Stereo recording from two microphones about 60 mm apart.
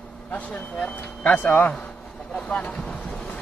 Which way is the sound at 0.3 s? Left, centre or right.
Left.